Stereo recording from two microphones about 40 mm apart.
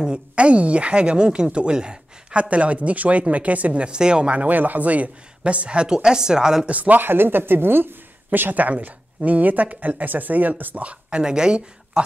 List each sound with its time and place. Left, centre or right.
0.4 s speech: right
3.8 s a woman's voice: right
5.4 s a woman's voice: right
6.7 s speech: right
7.0 s speech: right
10.8 s speech: right